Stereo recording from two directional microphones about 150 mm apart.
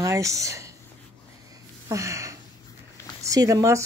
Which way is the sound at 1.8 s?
20° right (ahead or behind).